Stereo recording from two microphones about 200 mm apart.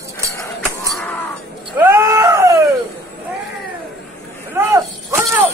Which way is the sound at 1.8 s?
10° right (ahead or behind).